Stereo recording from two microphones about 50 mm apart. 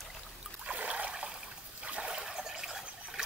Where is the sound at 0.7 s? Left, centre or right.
Right.